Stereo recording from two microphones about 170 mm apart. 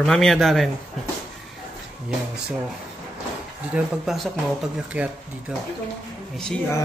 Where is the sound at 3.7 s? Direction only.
5° right (ahead or behind).